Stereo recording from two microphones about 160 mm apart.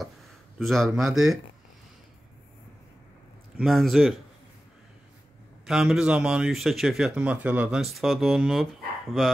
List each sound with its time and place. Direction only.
0.6 s speech: centre (ahead or behind)
3.5 s speech: centre (ahead or behind)
5.7 s speech: centre (ahead or behind)